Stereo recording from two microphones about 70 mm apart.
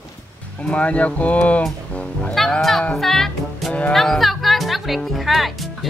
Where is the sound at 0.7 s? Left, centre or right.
Centre.